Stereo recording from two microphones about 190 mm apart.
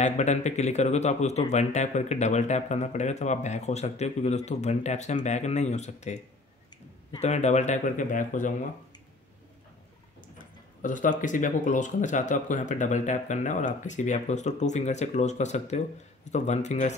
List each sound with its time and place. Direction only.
0.0 s speech: 40° left (ahead or behind)
10.8 s speech: 45° left (ahead or behind)